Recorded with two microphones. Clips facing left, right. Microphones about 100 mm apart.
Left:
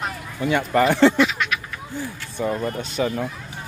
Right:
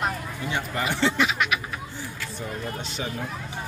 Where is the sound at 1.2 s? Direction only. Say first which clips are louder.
Left 3 dB; 5° right (ahead or behind).